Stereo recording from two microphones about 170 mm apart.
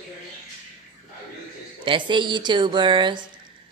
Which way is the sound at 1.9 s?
30° right (ahead or behind).